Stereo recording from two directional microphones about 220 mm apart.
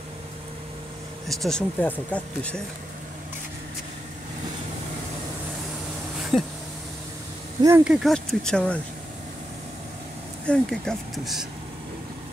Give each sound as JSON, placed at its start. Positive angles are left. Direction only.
{"t": 1.3, "sound": "speech", "side_deg": 0}
{"t": 6.3, "sound": "a sound", "side_deg": 25}
{"t": 7.6, "sound": "speech", "side_deg": -5}
{"t": 10.4, "sound": "speech", "side_deg": 5}